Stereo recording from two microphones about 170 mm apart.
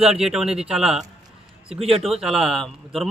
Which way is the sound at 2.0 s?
Centre (ahead or behind).